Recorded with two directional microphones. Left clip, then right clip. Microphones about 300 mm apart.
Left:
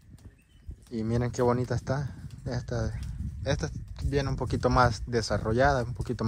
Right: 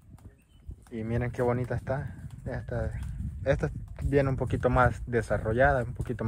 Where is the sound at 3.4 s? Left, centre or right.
Centre.